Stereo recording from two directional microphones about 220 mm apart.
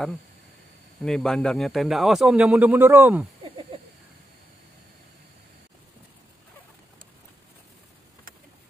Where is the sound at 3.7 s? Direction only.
25° right (ahead or behind).